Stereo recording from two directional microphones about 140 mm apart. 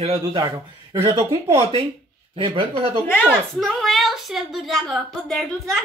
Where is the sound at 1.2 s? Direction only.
20° right (ahead or behind).